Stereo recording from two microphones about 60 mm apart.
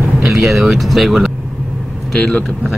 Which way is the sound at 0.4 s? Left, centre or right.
Centre.